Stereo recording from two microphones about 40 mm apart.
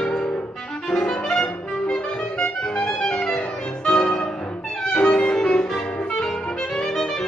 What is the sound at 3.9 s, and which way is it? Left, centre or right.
Music, centre.